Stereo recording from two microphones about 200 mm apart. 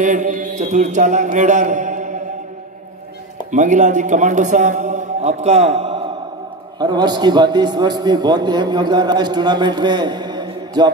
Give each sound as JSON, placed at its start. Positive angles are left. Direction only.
{"t": 0.0, "sound": "mantra", "side_deg": -40}
{"t": 3.5, "sound": "a man's voice", "side_deg": -40}